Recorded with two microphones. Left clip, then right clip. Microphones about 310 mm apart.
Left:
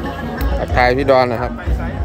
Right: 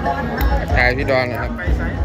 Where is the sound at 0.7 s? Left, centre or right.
Centre.